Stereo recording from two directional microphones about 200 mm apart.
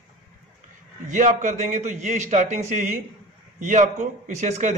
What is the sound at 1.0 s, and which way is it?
A man's voice, 40° right (ahead or behind).